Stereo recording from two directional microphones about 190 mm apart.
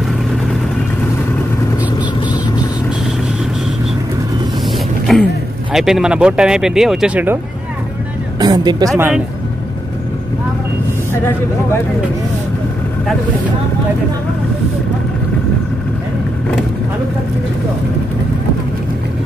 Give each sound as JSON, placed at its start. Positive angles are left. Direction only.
{"t": 5.1, "sound": "speech", "side_deg": 0}
{"t": 8.4, "sound": "a woman's voice", "side_deg": -20}